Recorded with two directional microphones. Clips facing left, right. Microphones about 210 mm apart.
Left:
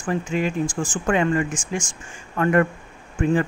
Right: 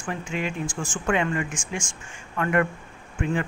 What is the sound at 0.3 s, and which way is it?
Speech, 40° left (ahead or behind).